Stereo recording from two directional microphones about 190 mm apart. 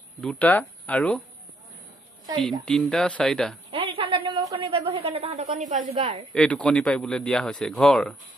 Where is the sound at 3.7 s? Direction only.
30° right (ahead or behind).